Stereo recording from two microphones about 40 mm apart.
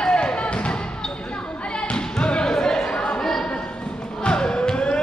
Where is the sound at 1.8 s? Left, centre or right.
Left.